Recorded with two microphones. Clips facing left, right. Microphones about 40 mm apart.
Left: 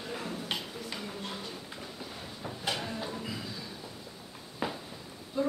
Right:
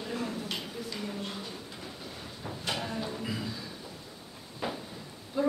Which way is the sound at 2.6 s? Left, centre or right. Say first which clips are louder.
Right 1 dB; centre.